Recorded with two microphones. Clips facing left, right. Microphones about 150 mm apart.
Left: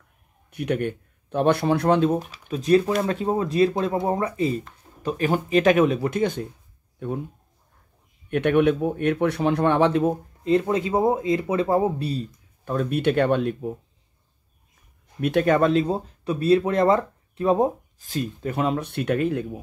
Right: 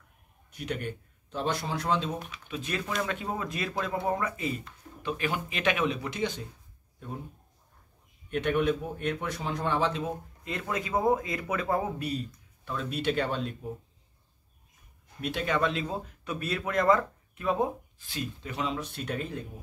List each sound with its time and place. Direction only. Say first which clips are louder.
0.5 s speech: left 10 dB; 60° left (ahead or behind)
2.1 s speech: left 9 dB; 35° left (ahead or behind); by 6.4 s 50° left (ahead or behind)
8.3 s speech: left 8 dB; 60° left (ahead or behind)
10.4 s speech: left 14 dB; 30° left (ahead or behind)
12.6 s speech: left 8 dB; 55° left (ahead or behind)
15.1 s speech: left 10 dB; 55° left (ahead or behind)